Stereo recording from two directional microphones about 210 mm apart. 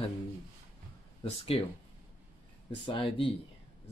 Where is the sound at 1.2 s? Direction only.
30° left (ahead or behind).